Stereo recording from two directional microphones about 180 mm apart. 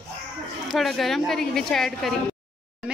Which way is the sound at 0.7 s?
Centre (ahead or behind).